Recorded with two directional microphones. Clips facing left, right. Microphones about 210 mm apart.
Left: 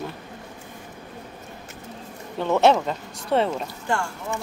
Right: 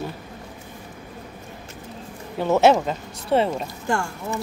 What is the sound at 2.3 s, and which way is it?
Speech, 5° right (ahead or behind).